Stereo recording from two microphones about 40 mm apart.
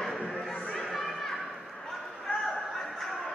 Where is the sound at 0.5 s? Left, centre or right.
Centre.